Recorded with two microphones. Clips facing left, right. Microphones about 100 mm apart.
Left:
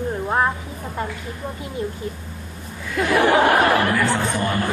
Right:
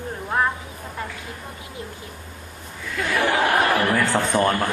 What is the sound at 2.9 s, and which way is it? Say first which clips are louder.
Speech: left 5 dB; 25° left (ahead or behind).